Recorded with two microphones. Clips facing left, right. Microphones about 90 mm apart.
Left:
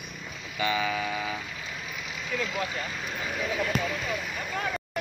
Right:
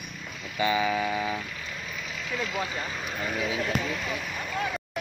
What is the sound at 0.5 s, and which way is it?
Vehicle, 20° right (ahead or behind).